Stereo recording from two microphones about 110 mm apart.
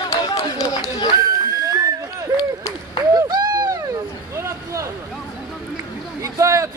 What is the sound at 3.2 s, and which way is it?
Hoot, 35° right (ahead or behind).